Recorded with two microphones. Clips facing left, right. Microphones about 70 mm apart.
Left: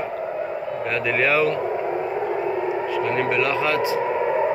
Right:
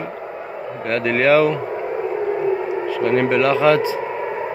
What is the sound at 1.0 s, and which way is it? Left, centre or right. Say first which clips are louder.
Speech: right 6 dB; right.